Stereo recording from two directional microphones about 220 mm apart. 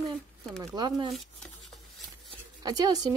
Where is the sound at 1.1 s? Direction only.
Centre (ahead or behind).